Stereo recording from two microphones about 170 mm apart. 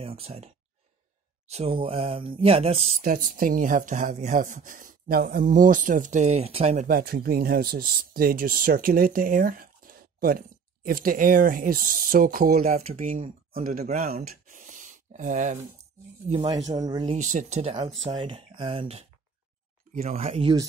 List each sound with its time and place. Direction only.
0.0 s speech: 35° right (ahead or behind)
1.5 s speech: 35° right (ahead or behind)
3.0 s speech: 55° right (ahead or behind)
6.9 s speech: 60° right (ahead or behind)
12.7 s speech: 45° right (ahead or behind); by 14.6 s 60° right (ahead or behind)
14.7 s a sound: 45° right (ahead or behind)
16.4 s speech: 20° right (ahead or behind)
17.1 s speech: 45° right (ahead or behind)